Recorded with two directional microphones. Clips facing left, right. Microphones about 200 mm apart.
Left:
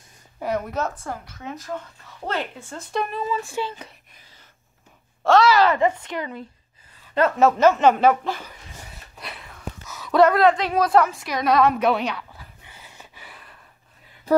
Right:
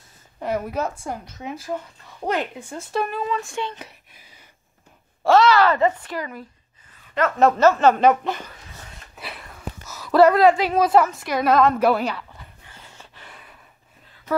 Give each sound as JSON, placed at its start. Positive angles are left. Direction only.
{"t": 0.4, "sound": "speech", "side_deg": -5}
{"t": 2.9, "sound": "speech", "side_deg": 0}
{"t": 3.8, "sound": "a sound", "side_deg": -10}
{"t": 5.2, "sound": "speech", "side_deg": -5}
{"t": 5.5, "sound": "a woman's voice", "side_deg": 15}
{"t": 7.5, "sound": "speech", "side_deg": 15}
{"t": 8.1, "sound": "speech", "side_deg": 0}
{"t": 8.5, "sound": "dog", "side_deg": 10}
{"t": 9.1, "sound": "a sound", "side_deg": 0}